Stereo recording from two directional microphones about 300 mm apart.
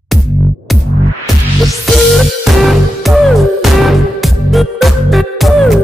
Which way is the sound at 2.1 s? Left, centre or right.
Centre.